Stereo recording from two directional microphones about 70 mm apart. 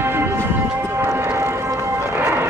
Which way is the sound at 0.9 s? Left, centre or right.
Right.